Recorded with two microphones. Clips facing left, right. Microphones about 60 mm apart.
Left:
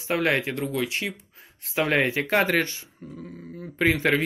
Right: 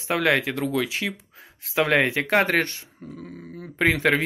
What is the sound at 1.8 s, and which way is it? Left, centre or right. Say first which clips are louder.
Speech: right 2 dB; right.